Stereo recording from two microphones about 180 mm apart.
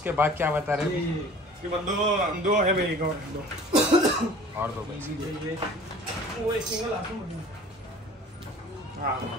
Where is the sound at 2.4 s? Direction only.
45° right (ahead or behind).